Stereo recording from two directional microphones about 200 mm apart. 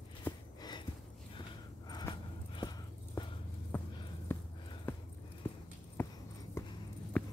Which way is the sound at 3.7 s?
10° left (ahead or behind).